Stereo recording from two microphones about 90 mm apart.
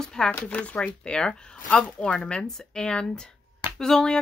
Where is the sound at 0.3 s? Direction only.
20° left (ahead or behind).